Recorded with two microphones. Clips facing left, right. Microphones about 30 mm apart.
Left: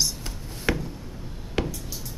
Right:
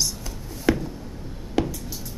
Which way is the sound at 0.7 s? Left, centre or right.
Left.